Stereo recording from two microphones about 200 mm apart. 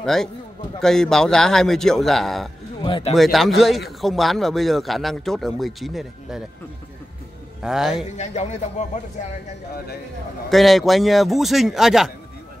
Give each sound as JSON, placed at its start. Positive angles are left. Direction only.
{"t": 0.0, "sound": "a man's voice", "side_deg": 0}
{"t": 2.8, "sound": "speech", "side_deg": 25}
{"t": 3.2, "sound": "a man's voice", "side_deg": 0}
{"t": 7.6, "sound": "a man's voice", "side_deg": -5}
{"t": 8.2, "sound": "speech", "side_deg": 35}
{"t": 10.5, "sound": "a man's voice", "side_deg": 0}